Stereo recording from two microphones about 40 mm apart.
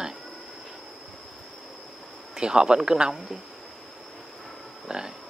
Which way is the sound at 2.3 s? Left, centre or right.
Centre.